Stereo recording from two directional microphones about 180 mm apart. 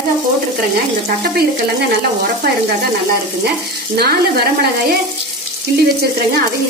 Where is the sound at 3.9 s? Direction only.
60° right (ahead or behind).